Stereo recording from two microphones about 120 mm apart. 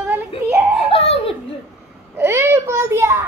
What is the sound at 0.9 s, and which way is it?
Speech, 55° left (ahead or behind).